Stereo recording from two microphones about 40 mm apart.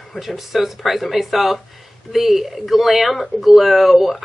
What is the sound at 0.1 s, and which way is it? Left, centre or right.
A woman's voice, centre.